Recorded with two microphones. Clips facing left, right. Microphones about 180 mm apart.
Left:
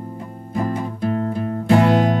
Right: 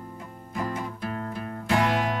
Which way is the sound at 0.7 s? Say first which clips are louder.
Left 9 dB; 30° left (ahead or behind).